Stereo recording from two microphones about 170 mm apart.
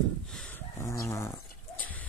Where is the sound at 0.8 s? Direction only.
15° left (ahead or behind).